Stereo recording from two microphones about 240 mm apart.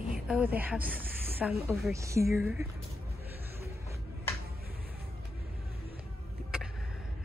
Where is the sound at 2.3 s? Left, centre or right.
Centre.